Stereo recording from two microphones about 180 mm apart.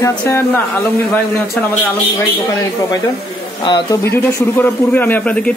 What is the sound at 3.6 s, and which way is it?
A man's voice, 20° left (ahead or behind).